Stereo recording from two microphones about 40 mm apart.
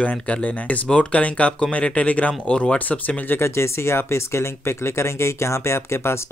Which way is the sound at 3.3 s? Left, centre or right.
Left.